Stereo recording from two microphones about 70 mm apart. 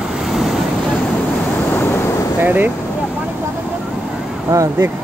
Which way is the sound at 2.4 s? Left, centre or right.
Right.